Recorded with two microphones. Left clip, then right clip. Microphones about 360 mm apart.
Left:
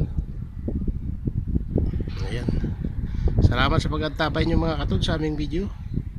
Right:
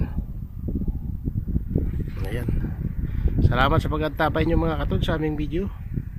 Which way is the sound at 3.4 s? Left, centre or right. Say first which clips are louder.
Right 2 dB; centre.